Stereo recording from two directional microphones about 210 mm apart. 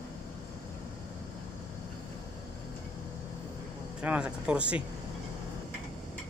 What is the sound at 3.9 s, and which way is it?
Speech, 5° right (ahead or behind).